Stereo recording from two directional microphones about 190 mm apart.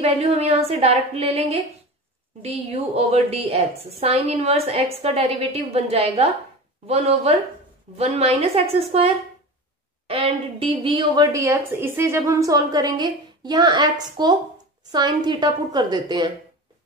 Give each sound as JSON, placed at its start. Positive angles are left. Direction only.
{"t": 0.0, "sound": "a woman's voice", "side_deg": -30}